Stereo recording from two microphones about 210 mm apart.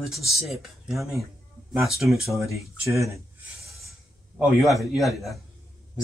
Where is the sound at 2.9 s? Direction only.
15° right (ahead or behind).